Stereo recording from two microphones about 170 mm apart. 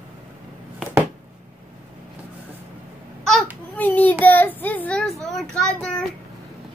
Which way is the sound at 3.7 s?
10° left (ahead or behind).